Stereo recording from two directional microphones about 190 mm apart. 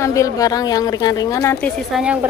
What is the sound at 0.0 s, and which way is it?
A woman's voice, 15° left (ahead or behind).